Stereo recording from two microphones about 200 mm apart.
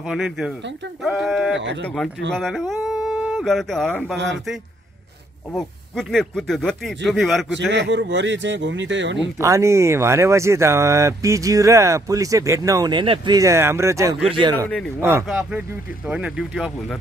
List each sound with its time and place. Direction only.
0.0 s speech: 5° right (ahead or behind)
1.6 s speech: 60° right (ahead or behind)
2.3 s speech: centre (ahead or behind)
5.5 s speech: centre (ahead or behind)
7.5 s speech: 65° right (ahead or behind)
9.4 s speech: 15° right (ahead or behind)
14.2 s speech: 25° right (ahead or behind)
15.0 s speech: 10° right (ahead or behind)